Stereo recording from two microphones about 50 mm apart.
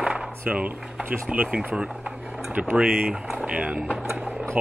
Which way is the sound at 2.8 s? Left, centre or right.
Centre.